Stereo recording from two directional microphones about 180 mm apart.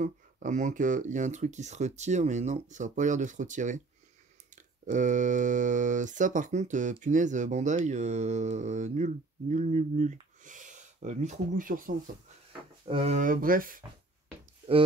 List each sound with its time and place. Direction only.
0.0 s speech: 45° right (ahead or behind)
12.8 s speech: 30° right (ahead or behind); by 13.8 s 50° right (ahead or behind)